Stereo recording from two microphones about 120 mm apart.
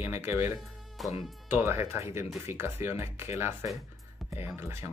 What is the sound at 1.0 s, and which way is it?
Speech, centre (ahead or behind).